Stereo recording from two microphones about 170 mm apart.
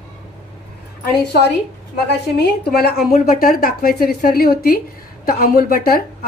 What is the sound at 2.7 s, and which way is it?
A woman's voice, 65° left (ahead or behind).